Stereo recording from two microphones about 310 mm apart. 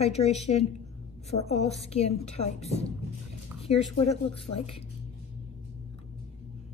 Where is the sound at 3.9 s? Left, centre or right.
Centre.